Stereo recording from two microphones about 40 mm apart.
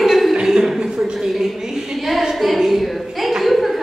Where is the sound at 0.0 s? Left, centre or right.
Centre.